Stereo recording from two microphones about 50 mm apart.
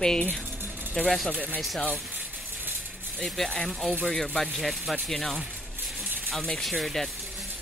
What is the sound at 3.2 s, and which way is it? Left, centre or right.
Speech, centre.